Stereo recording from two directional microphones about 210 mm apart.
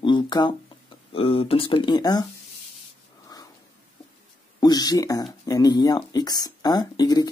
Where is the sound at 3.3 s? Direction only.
20° left (ahead or behind).